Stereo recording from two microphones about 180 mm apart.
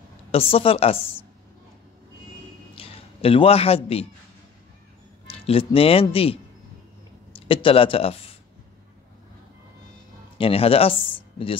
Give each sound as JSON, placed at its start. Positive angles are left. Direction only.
{"t": 0.3, "sound": "a woman's voice", "side_deg": 30}
{"t": 2.7, "sound": "speech", "side_deg": 30}
{"t": 5.2, "sound": "speech", "side_deg": 30}
{"t": 10.3, "sound": "speech", "side_deg": 30}